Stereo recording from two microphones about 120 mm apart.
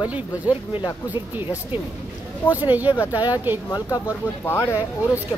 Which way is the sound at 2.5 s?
15° right (ahead or behind).